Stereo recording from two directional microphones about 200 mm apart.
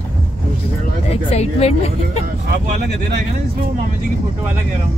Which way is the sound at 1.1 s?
30° left (ahead or behind).